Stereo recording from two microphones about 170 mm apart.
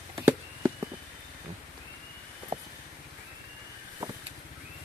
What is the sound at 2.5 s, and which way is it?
Vehicle, 35° right (ahead or behind).